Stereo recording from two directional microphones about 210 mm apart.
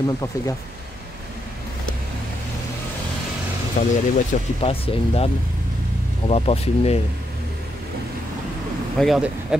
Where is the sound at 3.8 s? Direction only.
40° left (ahead or behind).